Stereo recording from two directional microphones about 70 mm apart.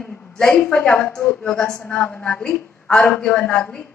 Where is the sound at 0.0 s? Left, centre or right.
Centre.